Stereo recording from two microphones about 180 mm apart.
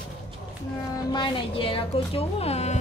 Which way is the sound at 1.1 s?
30° left (ahead or behind).